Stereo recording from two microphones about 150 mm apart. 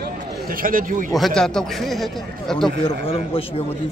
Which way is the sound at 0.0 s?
70° right (ahead or behind).